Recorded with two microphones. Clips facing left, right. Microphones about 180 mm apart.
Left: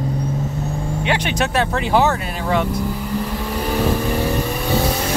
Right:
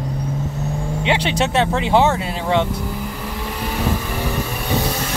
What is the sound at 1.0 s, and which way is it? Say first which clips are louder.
Speech: right 2 dB; 25° right (ahead or behind).